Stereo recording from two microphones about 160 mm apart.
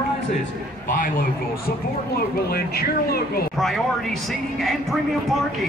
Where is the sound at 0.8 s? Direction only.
60° left (ahead or behind).